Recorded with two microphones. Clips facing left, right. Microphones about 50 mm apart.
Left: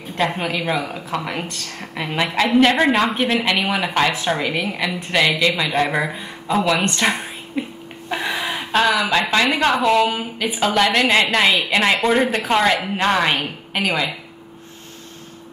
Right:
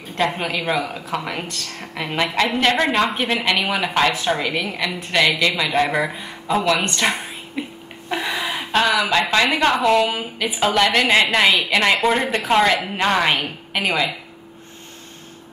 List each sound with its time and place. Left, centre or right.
0.2 s a woman's voice: centre
1.5 s speech: left
1.8 s a woman's voice: centre
8.3 s a woman's voice: centre